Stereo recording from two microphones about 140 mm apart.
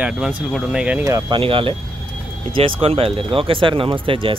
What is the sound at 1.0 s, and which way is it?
Speech, 25° right (ahead or behind).